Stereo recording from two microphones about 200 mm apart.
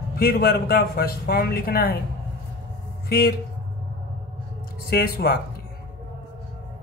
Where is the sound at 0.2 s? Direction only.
50° left (ahead or behind).